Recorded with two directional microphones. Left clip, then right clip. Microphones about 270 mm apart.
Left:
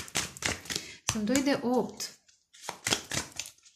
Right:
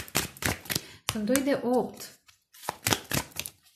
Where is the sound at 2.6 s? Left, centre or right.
Right.